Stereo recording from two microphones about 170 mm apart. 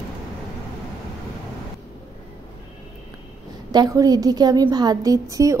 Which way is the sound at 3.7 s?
20° right (ahead or behind).